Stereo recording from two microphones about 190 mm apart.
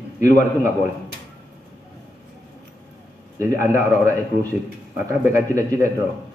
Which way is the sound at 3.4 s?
45° left (ahead or behind).